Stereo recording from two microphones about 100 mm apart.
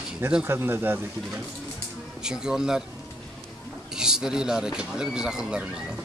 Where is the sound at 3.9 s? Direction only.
5° right (ahead or behind).